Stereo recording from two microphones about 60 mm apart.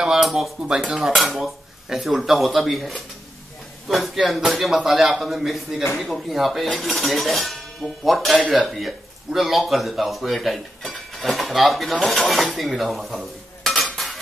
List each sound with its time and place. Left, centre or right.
0.0 s speech: centre
3.9 s speech: centre